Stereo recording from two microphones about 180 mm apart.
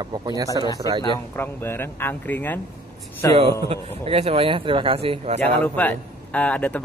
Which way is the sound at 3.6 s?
35° right (ahead or behind).